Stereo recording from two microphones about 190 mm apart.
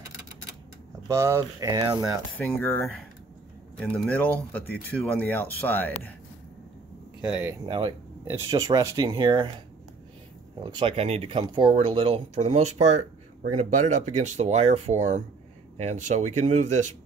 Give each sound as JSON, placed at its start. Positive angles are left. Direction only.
{"t": 1.0, "sound": "speech", "side_deg": -15}
{"t": 2.3, "sound": "speech", "side_deg": 10}
{"t": 7.2, "sound": "speech", "side_deg": -5}
{"t": 7.6, "sound": "speech", "side_deg": -25}
{"t": 10.6, "sound": "speech", "side_deg": -25}